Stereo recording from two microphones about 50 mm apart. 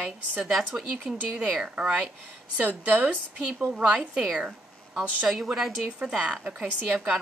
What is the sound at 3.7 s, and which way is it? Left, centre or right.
Speech, centre.